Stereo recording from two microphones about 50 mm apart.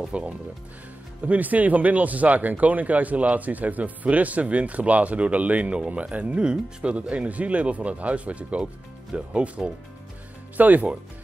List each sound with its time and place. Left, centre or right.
0.1 s speech: right
10.6 s speech: right